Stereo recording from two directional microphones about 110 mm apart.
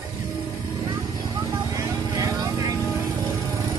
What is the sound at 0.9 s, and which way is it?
Vehicle, 35° right (ahead or behind).